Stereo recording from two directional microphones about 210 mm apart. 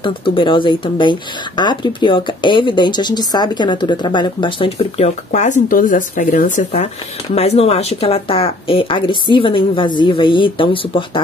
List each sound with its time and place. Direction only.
0.0 s speech: 25° left (ahead or behind)